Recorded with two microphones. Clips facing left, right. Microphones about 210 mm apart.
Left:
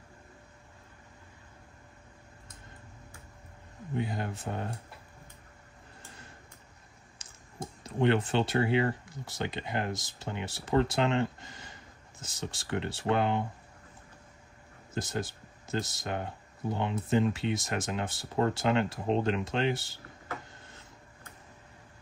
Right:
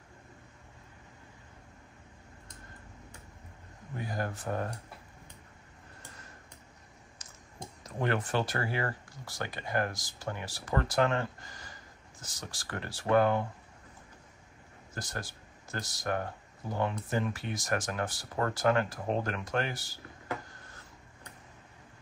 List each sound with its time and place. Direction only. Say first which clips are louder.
3.9 s speech: left 3 dB; 25° left (ahead or behind)
7.2 s a sound: right 1 dB; 30° left (ahead or behind)
7.8 s speech: left 5 dB; 25° left (ahead or behind)
15.0 s speech: left 7 dB; 20° left (ahead or behind)